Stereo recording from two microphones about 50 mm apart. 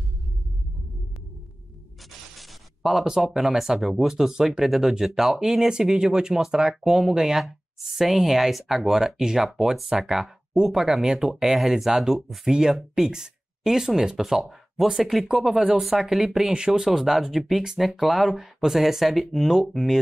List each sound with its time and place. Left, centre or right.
2.3 s speech: centre